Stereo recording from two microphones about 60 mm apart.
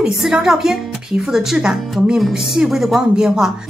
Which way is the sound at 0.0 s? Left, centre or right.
Centre.